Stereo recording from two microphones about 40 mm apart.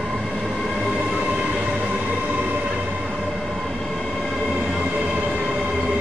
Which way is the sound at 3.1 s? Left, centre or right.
Centre.